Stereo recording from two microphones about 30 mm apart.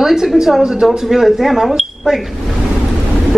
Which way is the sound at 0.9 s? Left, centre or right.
Centre.